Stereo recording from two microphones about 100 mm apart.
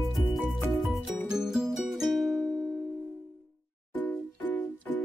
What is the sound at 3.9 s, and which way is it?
Music, 15° left (ahead or behind).